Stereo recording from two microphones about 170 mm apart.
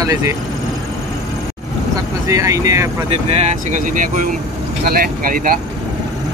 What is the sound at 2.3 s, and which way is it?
Speech, 20° right (ahead or behind).